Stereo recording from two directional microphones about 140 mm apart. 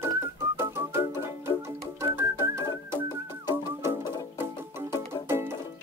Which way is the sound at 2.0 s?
20° right (ahead or behind).